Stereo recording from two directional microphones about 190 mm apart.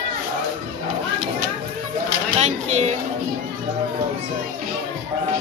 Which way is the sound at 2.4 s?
35° right (ahead or behind).